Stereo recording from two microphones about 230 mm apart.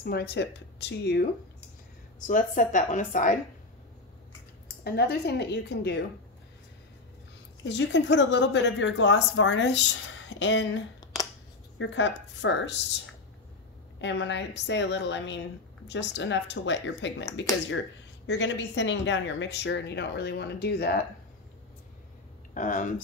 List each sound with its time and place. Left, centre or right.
0.0 s speech: left
2.1 s speech: left
4.8 s speech: left
7.6 s speech: left
11.8 s speech: left
14.0 s speech: left
22.5 s speech: left